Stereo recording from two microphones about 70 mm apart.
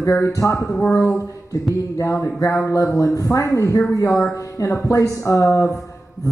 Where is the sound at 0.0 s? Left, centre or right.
Left.